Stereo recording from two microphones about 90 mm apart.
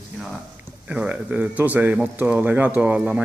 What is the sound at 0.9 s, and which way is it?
Speech, 15° right (ahead or behind).